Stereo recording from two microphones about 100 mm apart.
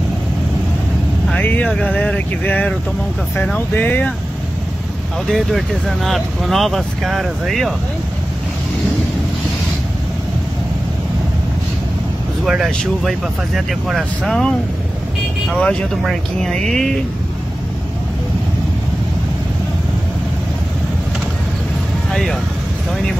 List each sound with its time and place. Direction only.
1.4 s speech: 15° left (ahead or behind)
5.3 s speech: centre (ahead or behind)
12.4 s speech: 5° right (ahead or behind)
15.5 s speech: 10° left (ahead or behind)
22.1 s speech: 5° left (ahead or behind)